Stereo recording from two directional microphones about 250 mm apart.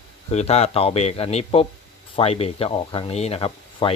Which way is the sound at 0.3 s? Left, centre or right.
Left.